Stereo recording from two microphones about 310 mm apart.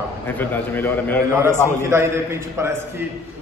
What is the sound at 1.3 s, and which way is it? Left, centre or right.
A man's voice, centre.